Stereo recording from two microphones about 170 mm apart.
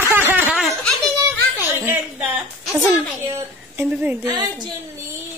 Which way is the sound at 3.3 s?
10° right (ahead or behind).